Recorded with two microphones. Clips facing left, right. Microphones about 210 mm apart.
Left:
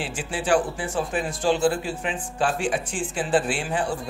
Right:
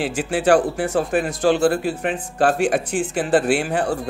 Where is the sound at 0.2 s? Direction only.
65° right (ahead or behind).